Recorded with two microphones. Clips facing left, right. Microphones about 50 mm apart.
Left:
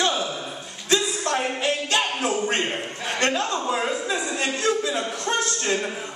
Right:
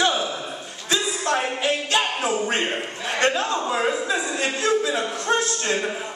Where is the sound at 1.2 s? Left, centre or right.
Right.